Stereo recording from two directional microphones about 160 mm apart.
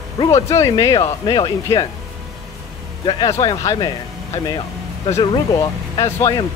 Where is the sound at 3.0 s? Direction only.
30° left (ahead or behind).